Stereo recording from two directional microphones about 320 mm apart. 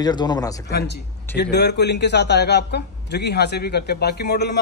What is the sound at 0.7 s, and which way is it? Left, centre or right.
A man's voice, left.